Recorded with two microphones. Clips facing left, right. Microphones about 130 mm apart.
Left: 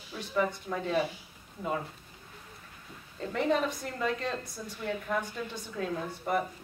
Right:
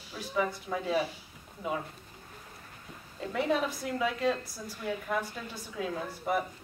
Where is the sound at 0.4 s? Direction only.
5° right (ahead or behind).